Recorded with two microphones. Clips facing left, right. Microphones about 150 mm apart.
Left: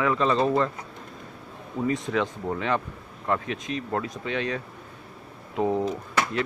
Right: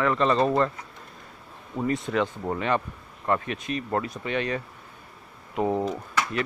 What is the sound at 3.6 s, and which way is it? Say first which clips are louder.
Speech: right 1 dB; 60° right (ahead or behind).